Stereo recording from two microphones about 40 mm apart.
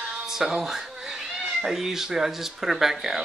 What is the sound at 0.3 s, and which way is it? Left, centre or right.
Cat, centre.